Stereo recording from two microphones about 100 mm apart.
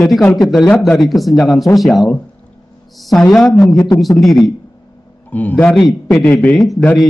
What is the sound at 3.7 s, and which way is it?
Speech, 30° left (ahead or behind).